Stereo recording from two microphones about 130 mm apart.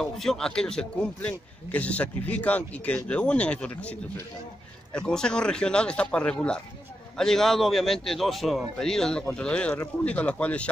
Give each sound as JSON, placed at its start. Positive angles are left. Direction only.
{"t": 0.0, "sound": "a man's voice", "side_deg": 5}
{"t": 4.9, "sound": "a man's voice", "side_deg": 5}